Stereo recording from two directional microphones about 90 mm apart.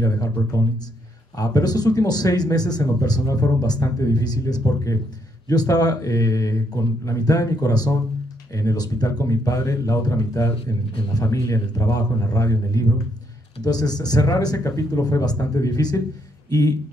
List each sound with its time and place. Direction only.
0.0 s speech: 40° left (ahead or behind)